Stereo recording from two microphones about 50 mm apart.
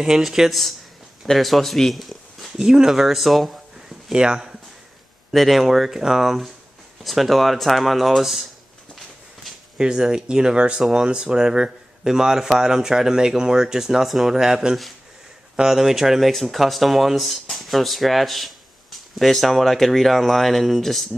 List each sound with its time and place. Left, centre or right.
0.0 s speech: centre
2.6 s speech: centre
4.1 s speech: centre
5.3 s speech: centre
9.8 s speech: centre